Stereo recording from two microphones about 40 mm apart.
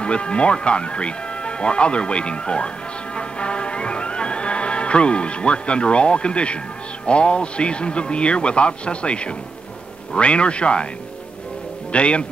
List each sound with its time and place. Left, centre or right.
0.0 s speech: left
3.2 s music: left
7.1 s speech: left
11.9 s speech: left